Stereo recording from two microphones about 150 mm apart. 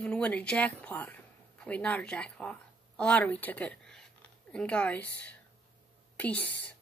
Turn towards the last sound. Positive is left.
turn(degrees=10)  # may be behind; listen again after turning